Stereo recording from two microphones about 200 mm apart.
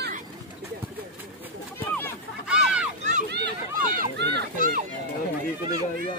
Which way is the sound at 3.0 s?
35° right (ahead or behind).